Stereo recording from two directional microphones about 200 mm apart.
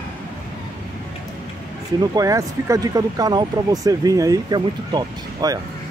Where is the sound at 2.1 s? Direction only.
15° right (ahead or behind).